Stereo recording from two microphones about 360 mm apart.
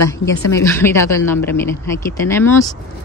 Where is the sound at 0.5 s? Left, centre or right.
Centre.